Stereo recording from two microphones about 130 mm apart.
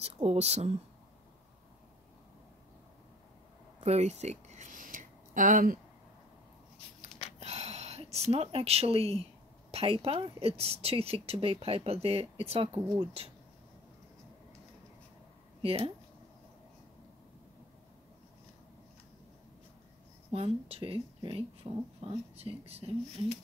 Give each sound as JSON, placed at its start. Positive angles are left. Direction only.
{"t": 0.0, "sound": "speech", "side_deg": -55}
{"t": 3.8, "sound": "a sound", "side_deg": -55}
{"t": 7.3, "sound": "a sound", "side_deg": -55}
{"t": 9.7, "sound": "speech", "side_deg": -45}
{"t": 15.6, "sound": "speech", "side_deg": -50}
{"t": 20.2, "sound": "speech", "side_deg": -50}